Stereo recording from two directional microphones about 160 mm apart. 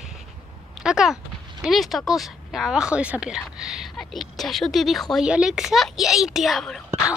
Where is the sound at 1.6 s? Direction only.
Centre (ahead or behind).